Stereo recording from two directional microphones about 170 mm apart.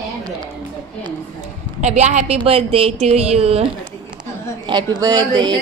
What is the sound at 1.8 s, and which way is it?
A woman's voice, 40° right (ahead or behind).